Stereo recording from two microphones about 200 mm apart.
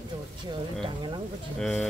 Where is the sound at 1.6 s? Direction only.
Centre (ahead or behind).